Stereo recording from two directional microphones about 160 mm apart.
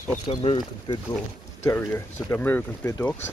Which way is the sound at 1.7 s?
15° left (ahead or behind).